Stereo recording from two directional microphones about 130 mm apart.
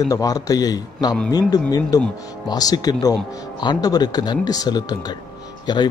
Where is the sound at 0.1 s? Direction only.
30° left (ahead or behind).